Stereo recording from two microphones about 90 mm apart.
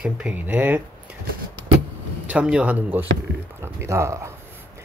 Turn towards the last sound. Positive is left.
turn(degrees=-30)  # may be behind; listen again after turning